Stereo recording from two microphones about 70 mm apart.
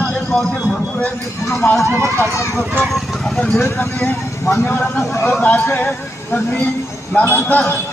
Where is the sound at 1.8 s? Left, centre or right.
Right.